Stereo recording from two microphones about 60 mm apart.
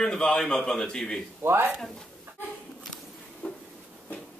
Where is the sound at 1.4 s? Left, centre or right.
Right.